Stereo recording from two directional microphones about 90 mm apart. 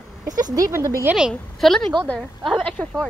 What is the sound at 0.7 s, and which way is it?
Speech, 30° right (ahead or behind).